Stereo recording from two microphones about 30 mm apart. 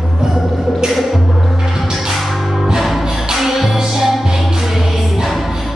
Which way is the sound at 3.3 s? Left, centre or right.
Centre.